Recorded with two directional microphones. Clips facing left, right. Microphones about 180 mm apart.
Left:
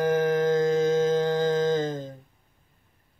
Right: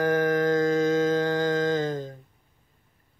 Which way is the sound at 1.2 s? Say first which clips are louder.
Left 1 dB; 20° left (ahead or behind).